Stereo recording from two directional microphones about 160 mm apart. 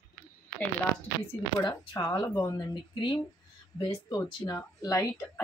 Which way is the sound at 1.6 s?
25° left (ahead or behind).